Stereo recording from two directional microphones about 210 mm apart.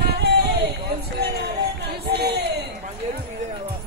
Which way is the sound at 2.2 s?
50° right (ahead or behind).